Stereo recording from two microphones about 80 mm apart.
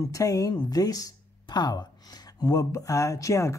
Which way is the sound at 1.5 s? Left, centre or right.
Left.